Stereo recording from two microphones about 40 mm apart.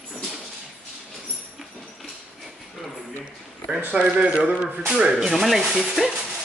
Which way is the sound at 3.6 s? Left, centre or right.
Centre.